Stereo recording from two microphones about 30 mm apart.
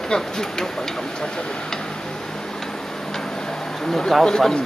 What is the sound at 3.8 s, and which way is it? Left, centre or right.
Speech, centre.